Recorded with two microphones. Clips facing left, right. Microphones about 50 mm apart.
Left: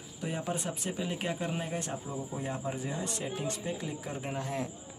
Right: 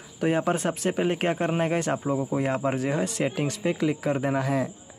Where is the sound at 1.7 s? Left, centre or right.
Right.